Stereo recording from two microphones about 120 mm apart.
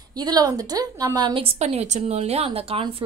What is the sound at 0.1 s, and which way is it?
A woman's voice, 35° right (ahead or behind).